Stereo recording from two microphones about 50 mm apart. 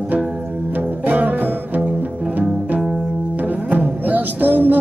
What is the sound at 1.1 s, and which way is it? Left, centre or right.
Music, right.